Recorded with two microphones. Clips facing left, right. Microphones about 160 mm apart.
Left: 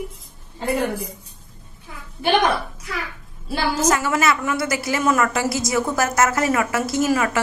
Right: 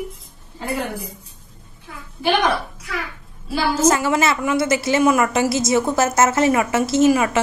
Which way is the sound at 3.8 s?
25° right (ahead or behind).